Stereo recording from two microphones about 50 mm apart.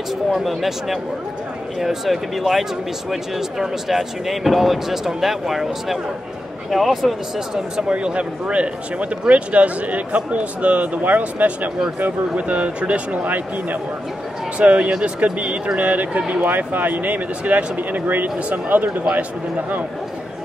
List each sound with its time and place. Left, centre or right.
0.3 s speech: centre; by 16.4 s right
16.4 s speech: right